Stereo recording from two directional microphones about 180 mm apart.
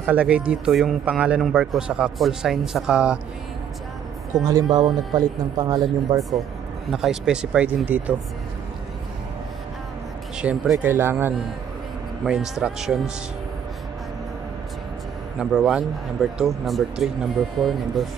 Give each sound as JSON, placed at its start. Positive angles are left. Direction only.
{"t": 0.0, "sound": "speech", "side_deg": -10}
{"t": 4.5, "sound": "speech", "side_deg": -20}
{"t": 6.9, "sound": "speech", "side_deg": -5}
{"t": 10.3, "sound": "speech", "side_deg": -5}
{"t": 15.3, "sound": "speech", "side_deg": -5}